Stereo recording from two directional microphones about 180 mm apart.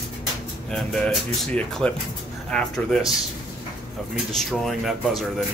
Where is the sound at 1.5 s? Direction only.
5° left (ahead or behind).